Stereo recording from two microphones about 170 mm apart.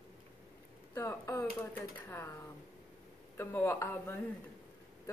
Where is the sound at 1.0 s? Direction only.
15° left (ahead or behind).